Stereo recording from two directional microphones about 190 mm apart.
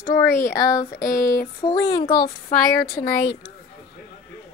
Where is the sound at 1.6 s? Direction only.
20° left (ahead or behind).